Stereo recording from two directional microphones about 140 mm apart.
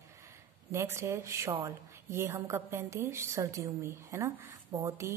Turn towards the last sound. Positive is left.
turn(degrees=-20)  # may be behind; listen again after turning